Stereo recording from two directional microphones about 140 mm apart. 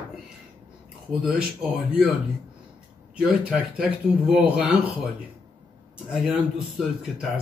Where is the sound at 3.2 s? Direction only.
10° right (ahead or behind).